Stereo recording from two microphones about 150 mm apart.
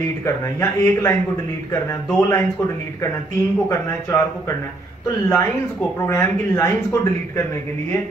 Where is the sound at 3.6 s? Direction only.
15° left (ahead or behind).